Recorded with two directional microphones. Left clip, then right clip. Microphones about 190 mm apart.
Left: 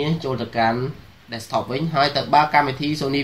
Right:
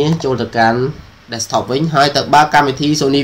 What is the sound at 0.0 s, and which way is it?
Speech, 15° right (ahead or behind).